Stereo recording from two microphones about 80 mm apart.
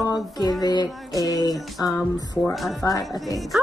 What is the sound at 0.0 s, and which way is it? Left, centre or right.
Music, left.